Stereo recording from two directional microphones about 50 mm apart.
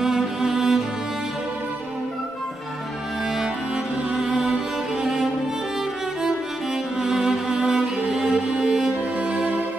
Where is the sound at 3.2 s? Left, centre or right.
Centre.